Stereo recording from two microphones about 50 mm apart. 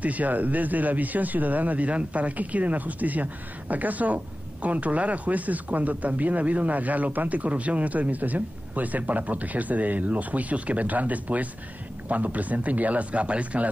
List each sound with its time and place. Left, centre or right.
0.0 s speech: right